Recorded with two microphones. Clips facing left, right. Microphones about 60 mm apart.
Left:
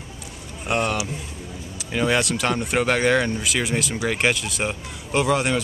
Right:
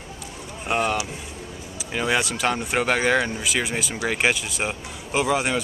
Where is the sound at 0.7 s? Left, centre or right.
Centre.